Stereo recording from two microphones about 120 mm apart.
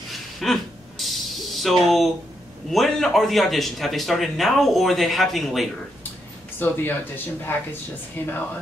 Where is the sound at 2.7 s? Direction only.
Centre (ahead or behind).